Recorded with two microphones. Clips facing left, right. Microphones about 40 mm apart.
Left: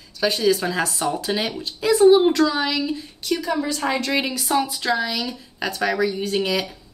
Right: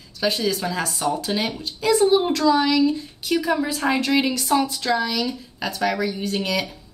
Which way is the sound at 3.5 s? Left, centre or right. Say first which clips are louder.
Even; centre.